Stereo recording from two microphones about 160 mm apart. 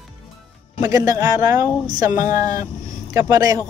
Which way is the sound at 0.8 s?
20° right (ahead or behind).